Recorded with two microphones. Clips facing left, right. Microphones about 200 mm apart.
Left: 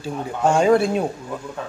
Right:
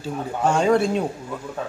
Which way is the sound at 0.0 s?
10° left (ahead or behind).